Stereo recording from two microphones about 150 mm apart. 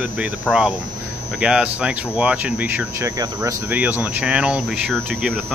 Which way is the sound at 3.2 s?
25° right (ahead or behind).